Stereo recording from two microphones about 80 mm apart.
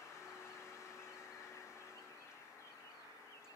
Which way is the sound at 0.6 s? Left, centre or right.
Left.